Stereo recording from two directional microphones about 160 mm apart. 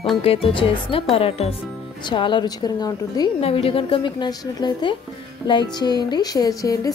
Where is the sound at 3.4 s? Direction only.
35° left (ahead or behind).